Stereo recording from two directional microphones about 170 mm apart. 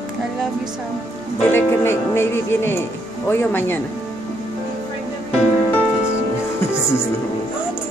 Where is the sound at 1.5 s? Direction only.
15° left (ahead or behind).